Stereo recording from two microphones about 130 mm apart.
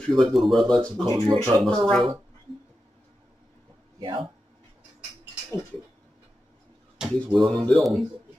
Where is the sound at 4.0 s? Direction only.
40° right (ahead or behind).